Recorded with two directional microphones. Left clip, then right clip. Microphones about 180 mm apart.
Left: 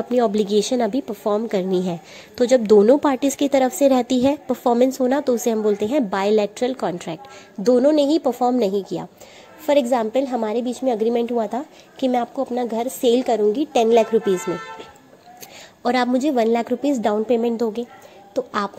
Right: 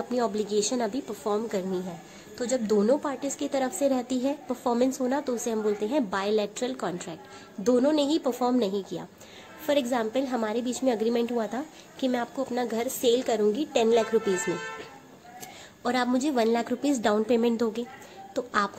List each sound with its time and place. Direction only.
0.1 s a woman's voice: 30° left (ahead or behind)
15.8 s a woman's voice: 30° left (ahead or behind); by 17.8 s 10° left (ahead or behind)
18.3 s speech: 25° left (ahead or behind)